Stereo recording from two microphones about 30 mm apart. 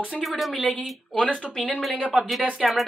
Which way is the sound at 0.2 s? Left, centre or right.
Centre.